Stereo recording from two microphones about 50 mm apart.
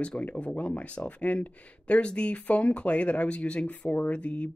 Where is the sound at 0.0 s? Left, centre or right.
Left.